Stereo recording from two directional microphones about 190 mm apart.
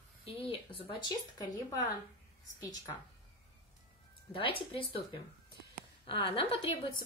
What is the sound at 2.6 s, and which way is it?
Speech, 20° left (ahead or behind).